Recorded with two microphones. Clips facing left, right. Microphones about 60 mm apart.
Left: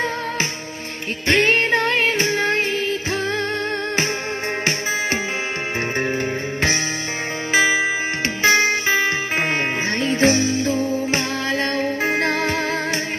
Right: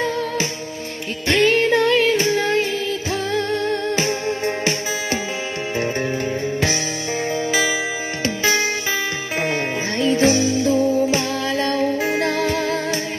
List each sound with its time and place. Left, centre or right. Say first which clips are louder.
1.2 s music: right 1 dB; left
8.5 s music: left 5 dB; left